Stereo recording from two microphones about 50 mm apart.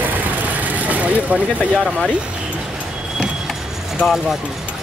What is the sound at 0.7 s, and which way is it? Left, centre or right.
Vehicle, right.